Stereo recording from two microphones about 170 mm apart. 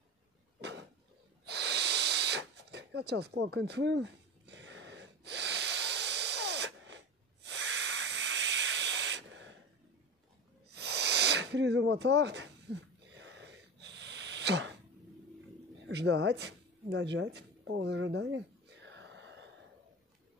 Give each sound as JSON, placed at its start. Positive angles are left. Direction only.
{"t": 0.6, "sound": "a sound", "side_deg": -90}
{"t": 1.4, "sound": "snort", "side_deg": -80}
{"t": 7.4, "sound": "hiss", "side_deg": -90}
{"t": 10.7, "sound": "snake", "side_deg": -75}
{"t": 13.1, "sound": "sneeze", "side_deg": -90}
{"t": 15.9, "sound": "speech", "side_deg": -80}